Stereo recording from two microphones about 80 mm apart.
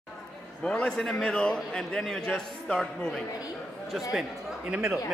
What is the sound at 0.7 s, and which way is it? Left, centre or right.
A man's voice, centre.